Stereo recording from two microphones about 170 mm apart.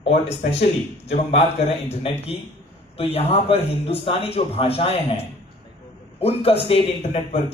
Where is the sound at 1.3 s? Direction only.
35° left (ahead or behind).